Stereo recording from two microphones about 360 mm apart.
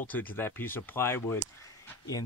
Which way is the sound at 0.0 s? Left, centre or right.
Centre.